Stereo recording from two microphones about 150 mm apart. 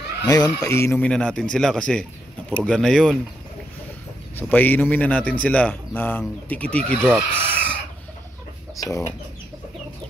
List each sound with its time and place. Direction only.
0.2 s speech: 25° left (ahead or behind)
1.0 s speech: 5° left (ahead or behind)
4.4 s a man's voice: 10° left (ahead or behind)
7.2 s speech: 15° right (ahead or behind)
8.7 s speech: 20° left (ahead or behind)